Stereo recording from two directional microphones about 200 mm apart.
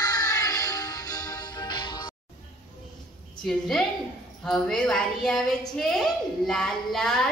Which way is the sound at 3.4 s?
Centre (ahead or behind).